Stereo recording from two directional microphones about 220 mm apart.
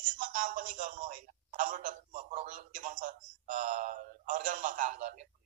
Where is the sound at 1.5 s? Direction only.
35° right (ahead or behind).